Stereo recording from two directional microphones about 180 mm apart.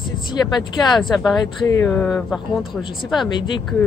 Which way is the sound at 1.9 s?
5° left (ahead or behind).